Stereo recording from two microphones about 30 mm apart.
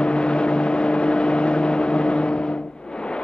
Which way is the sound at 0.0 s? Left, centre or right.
Left.